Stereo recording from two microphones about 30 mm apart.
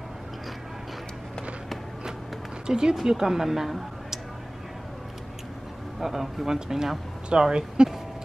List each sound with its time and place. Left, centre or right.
2.6 s speech: right
5.9 s speech: centre
7.3 s speech: right